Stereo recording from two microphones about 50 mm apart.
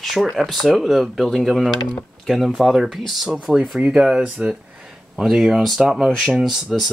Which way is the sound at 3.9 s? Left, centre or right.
Centre.